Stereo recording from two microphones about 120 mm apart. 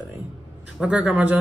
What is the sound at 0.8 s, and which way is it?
Speech, 10° right (ahead or behind).